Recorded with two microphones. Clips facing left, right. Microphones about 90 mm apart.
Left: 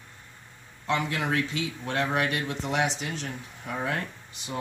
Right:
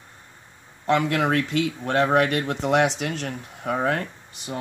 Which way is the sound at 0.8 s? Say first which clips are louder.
Right 7 dB; 60° right (ahead or behind).